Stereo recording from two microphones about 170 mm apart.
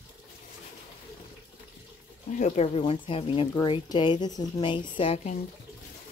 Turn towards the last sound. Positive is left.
turn(degrees=40)  # may be behind; listen again after turning